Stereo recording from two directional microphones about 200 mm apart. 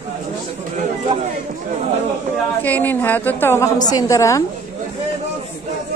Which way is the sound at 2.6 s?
10° left (ahead or behind).